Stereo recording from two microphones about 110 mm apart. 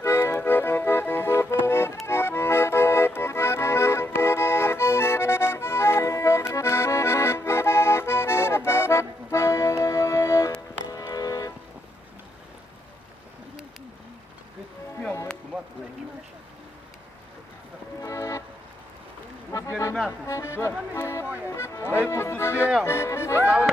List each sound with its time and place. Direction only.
0.0 s accordion: 25° left (ahead or behind)
10.9 s music: 35° left (ahead or behind)
18.0 s music: 30° left (ahead or behind)
19.5 s a sound: 30° left (ahead or behind)
20.1 s music: 25° left (ahead or behind)
23.4 s a sound: 10° right (ahead or behind)